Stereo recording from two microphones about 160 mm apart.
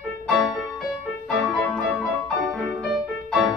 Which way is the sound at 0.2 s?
Centre (ahead or behind).